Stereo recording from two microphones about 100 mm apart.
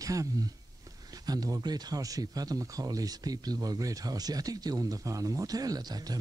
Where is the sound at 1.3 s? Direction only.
35° right (ahead or behind).